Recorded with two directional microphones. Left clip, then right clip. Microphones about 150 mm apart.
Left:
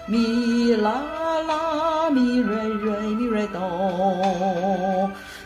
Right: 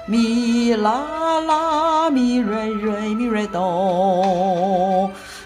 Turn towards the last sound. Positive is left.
turn(degrees=-25)  # may be behind; listen again after turning